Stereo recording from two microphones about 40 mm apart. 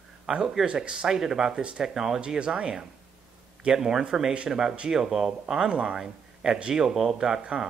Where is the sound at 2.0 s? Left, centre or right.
Centre.